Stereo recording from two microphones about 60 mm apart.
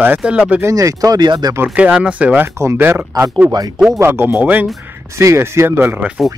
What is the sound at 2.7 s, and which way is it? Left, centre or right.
Speech, right.